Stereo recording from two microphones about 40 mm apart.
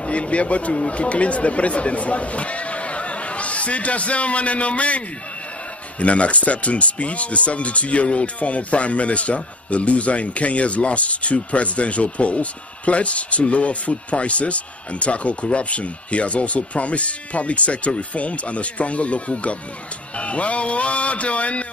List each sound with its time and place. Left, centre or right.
0.0 s speech: left